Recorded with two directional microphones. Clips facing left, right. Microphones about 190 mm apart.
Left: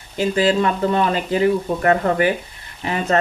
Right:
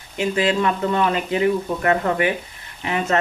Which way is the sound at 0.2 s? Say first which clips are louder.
Left 2 dB; 35° left (ahead or behind).